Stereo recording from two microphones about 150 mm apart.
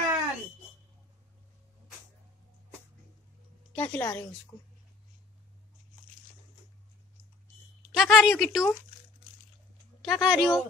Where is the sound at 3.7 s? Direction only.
10° left (ahead or behind).